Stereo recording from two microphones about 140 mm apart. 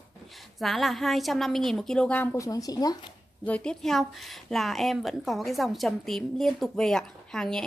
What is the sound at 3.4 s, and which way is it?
A woman's voice, 10° left (ahead or behind).